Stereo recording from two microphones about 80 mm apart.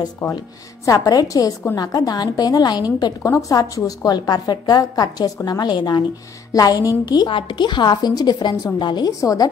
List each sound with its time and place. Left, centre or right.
0.2 s a woman's voice: left
0.8 s a woman's voice: left
3.3 s a woman's voice: left
6.5 s a woman's voice: left
9.2 s a woman's voice: left